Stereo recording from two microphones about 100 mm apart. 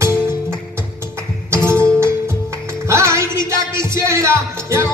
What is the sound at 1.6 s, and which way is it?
Music, 25° right (ahead or behind).